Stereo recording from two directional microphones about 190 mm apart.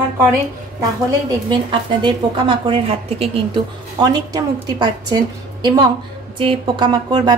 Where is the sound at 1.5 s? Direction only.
25° right (ahead or behind).